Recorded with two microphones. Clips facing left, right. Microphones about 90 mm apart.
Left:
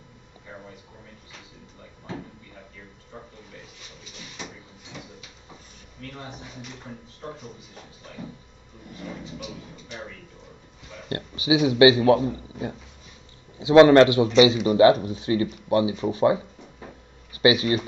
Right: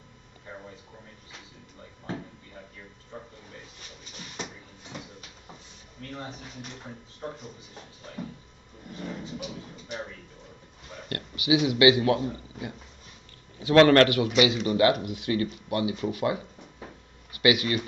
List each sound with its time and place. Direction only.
11.1 s speech: 25° left (ahead or behind)